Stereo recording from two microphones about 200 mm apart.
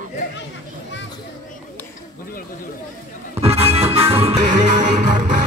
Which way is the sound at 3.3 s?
30° right (ahead or behind).